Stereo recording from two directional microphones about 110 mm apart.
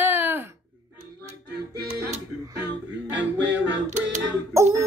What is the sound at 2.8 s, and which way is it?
Music, 15° right (ahead or behind).